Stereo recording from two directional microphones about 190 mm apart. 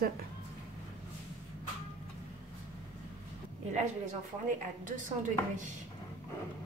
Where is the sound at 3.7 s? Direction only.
40° right (ahead or behind).